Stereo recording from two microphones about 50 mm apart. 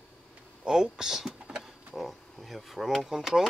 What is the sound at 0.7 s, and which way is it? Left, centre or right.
Speech, centre.